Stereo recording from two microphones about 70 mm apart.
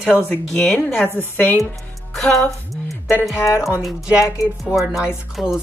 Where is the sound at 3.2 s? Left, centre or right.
Left.